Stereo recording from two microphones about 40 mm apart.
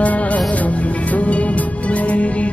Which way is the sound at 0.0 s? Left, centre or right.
Left.